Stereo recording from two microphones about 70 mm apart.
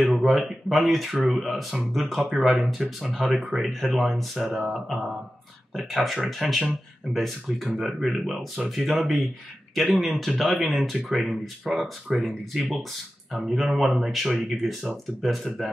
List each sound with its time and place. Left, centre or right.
0.0 s speech: centre